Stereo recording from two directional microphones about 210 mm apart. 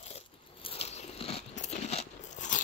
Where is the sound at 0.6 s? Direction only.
30° left (ahead or behind).